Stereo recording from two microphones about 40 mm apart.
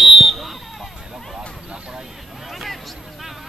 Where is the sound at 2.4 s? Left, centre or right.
Centre.